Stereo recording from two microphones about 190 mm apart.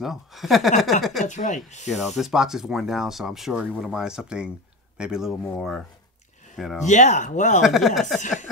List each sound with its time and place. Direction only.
0.0 s speech: centre (ahead or behind)
1.2 s speech: 40° left (ahead or behind)
1.9 s speech: centre (ahead or behind)
6.8 s speech: 40° left (ahead or behind)
7.6 s speech: centre (ahead or behind)